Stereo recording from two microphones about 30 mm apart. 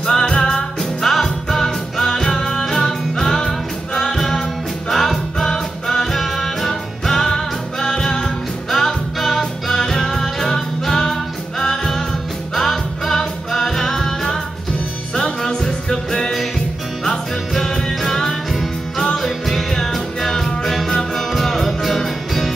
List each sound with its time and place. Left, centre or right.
0.4 s music: centre
15.4 s music: left; by 22.5 s centre